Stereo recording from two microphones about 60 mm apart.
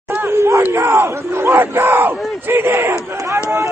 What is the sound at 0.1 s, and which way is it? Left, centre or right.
Crowd, right.